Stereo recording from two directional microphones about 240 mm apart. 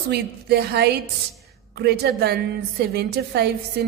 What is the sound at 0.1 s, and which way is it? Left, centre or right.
A woman's voice, right.